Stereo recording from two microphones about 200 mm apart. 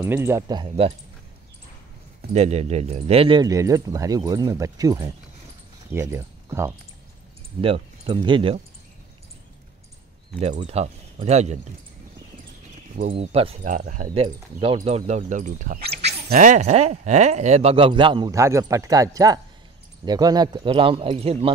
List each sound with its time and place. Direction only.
0.0 s speech: 10° right (ahead or behind)
0.5 s speech: 25° right (ahead or behind)
2.3 s speech: 30° right (ahead or behind); by 6.7 s 15° right (ahead or behind)
7.6 s speech: 30° right (ahead or behind)
10.6 s speech: 30° right (ahead or behind)
13.1 s speech: 30° right (ahead or behind); by 16.3 s 55° right (ahead or behind)
16.3 s speech: 40° right (ahead or behind)